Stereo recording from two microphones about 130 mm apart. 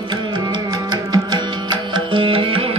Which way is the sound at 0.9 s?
35° right (ahead or behind).